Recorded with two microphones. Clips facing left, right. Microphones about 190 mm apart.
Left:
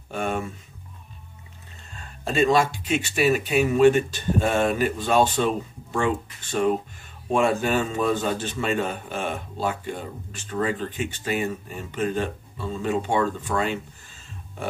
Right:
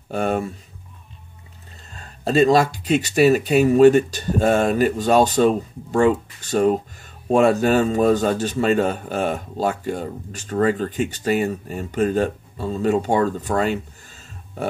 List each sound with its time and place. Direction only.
0.1 s a man's voice: 40° right (ahead or behind)
2.0 s a man's voice: 35° right (ahead or behind)